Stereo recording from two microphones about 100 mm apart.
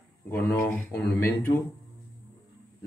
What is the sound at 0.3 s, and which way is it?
A man's voice, 25° left (ahead or behind).